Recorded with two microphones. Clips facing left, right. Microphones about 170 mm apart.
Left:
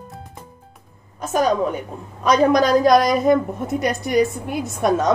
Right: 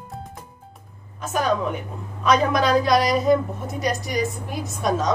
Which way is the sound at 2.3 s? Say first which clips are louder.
Left 4 dB; 45° left (ahead or behind).